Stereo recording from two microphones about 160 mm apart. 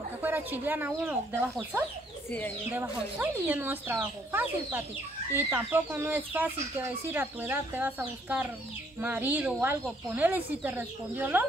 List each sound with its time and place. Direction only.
0.2 s speech: 10° right (ahead or behind)